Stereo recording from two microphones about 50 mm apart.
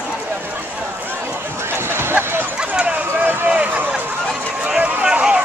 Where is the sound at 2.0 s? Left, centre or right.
Right.